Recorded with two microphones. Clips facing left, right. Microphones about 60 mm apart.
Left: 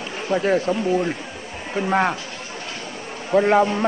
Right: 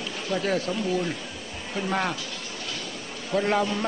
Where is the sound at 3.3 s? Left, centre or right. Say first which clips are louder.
Left 8 dB; left.